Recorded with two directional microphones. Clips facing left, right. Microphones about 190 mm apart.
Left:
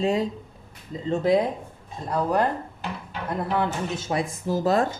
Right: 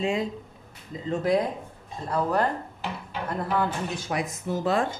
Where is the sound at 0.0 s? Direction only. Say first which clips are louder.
Left 3 dB; 35° left (ahead or behind).